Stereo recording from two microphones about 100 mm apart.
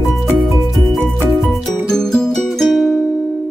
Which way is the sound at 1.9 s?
5° left (ahead or behind).